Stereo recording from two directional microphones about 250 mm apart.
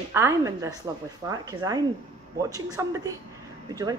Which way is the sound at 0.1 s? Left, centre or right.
Centre.